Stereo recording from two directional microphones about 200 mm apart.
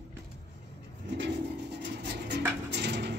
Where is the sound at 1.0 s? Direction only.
60° right (ahead or behind).